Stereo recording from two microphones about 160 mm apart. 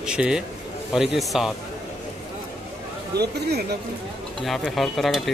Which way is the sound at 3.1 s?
90° right.